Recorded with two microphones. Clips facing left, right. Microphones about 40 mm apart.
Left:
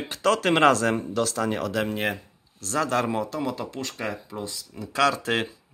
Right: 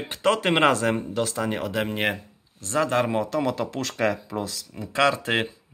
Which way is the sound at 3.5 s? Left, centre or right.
Right.